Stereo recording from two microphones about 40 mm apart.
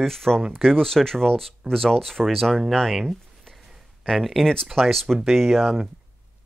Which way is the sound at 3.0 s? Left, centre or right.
Centre.